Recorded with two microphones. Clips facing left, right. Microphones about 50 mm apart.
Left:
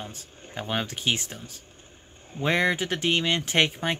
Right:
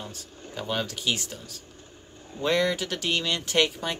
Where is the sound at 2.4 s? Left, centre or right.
Left.